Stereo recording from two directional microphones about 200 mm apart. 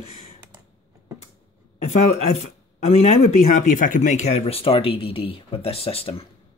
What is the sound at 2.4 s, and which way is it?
Speech, 30° left (ahead or behind).